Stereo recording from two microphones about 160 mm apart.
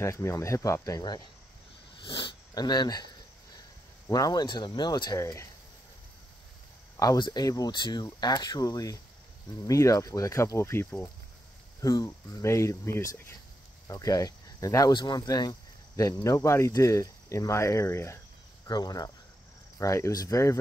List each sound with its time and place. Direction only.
0.0 s speech: 15° left (ahead or behind)
4.1 s speech: 25° left (ahead or behind)
7.0 s speech: 25° left (ahead or behind)